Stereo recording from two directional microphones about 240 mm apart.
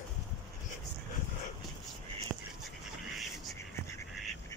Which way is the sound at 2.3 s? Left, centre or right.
Centre.